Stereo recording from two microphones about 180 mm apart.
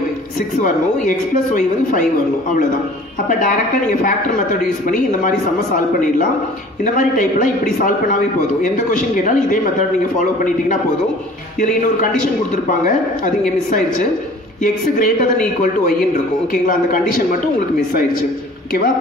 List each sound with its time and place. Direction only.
1.0 s a man's voice: 50° left (ahead or behind)
3.3 s a man's voice: 45° left (ahead or behind)
6.8 s a man's voice: 45° left (ahead or behind)
12.6 s a man's voice: 50° left (ahead or behind)